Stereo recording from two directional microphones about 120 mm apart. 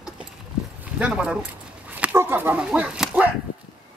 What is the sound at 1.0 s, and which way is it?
Speech, 10° right (ahead or behind).